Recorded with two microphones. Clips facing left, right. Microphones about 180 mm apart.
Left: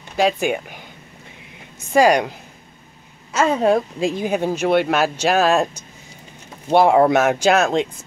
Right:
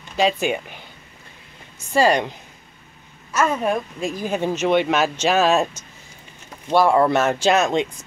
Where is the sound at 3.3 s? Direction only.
30° left (ahead or behind).